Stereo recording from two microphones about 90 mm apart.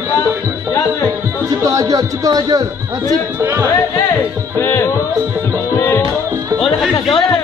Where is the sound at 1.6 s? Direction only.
40° right (ahead or behind).